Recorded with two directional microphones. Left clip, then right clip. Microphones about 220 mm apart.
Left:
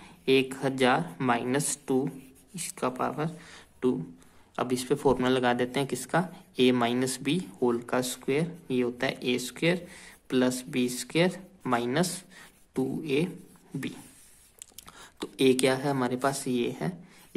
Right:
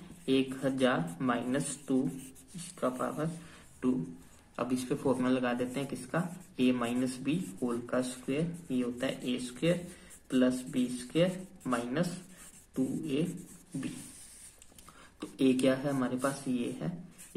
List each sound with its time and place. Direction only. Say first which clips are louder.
0.2 s speech: left 6 dB; 40° left (ahead or behind)
4.6 s speech: left 5 dB; 40° left (ahead or behind)
15.1 s speech: left 6 dB; 45° left (ahead or behind)